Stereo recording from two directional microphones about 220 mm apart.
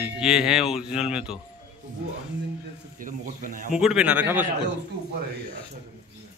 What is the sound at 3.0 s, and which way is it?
Speech, 40° right (ahead or behind).